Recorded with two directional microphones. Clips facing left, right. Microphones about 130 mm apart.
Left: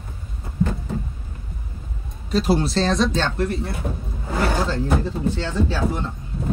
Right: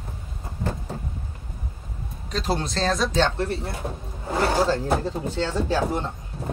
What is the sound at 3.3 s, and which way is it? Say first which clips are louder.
Speech: left 3 dB; 30° right (ahead or behind).